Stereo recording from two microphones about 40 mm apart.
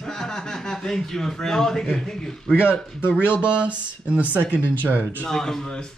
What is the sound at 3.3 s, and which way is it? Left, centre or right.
Speech, right.